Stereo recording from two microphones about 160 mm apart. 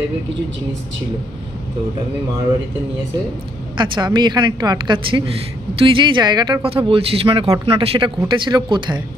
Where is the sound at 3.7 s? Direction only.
30° right (ahead or behind).